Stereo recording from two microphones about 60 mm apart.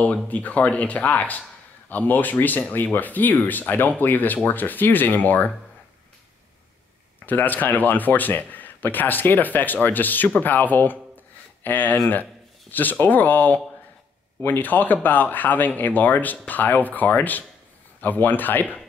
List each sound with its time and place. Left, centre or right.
0.0 s a man's voice: left
7.2 s a man's voice: left
13.0 s a man's voice: left